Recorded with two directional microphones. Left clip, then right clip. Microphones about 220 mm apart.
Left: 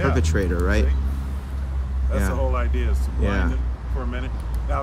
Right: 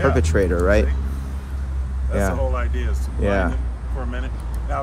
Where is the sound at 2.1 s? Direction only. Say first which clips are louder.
Right 3 dB; 10° left (ahead or behind).